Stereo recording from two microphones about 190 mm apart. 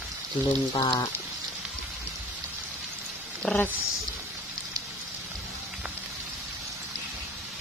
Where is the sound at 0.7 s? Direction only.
20° left (ahead or behind).